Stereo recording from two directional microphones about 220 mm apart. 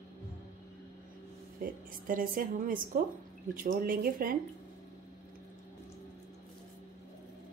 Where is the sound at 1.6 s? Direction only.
40° right (ahead or behind).